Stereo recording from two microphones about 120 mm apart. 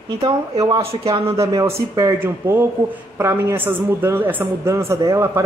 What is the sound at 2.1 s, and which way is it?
A woman's voice, 20° right (ahead or behind).